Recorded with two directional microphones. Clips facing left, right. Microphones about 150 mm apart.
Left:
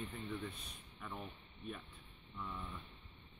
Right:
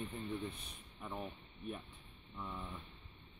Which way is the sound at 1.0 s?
30° right (ahead or behind).